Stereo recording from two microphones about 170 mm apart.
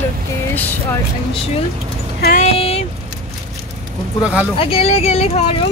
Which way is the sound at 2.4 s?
35° left (ahead or behind).